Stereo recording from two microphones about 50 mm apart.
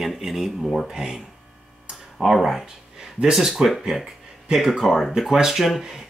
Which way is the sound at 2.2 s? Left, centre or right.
Centre.